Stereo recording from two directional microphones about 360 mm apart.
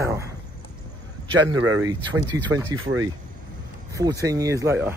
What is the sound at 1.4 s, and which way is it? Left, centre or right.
Speech, right.